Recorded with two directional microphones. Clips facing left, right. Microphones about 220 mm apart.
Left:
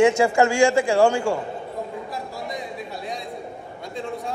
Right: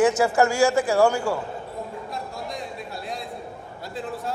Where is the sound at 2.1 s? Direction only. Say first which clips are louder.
Left 2 dB; centre (ahead or behind).